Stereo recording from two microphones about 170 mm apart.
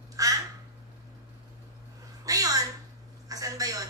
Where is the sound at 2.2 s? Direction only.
20° right (ahead or behind).